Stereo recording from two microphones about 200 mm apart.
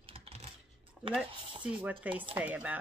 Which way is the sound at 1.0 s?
Centre (ahead or behind).